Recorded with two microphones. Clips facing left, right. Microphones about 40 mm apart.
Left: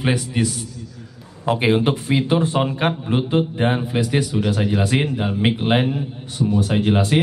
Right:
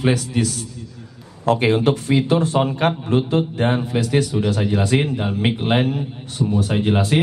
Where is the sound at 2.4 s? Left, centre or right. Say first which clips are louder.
Right 1 dB; centre.